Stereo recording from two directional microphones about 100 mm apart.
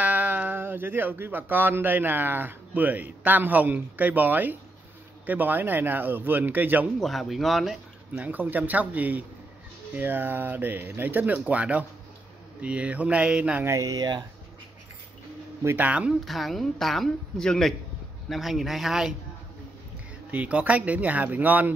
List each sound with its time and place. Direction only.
0.0 s speech: 15° right (ahead or behind)
7.0 s speech: centre (ahead or behind)
8.2 s speech: 15° right (ahead or behind)
13.7 s speech: 35° right (ahead or behind)
15.6 s speech: 20° right (ahead or behind)
16.3 s a woman's voice: centre (ahead or behind)
20.2 s speech: 15° right (ahead or behind)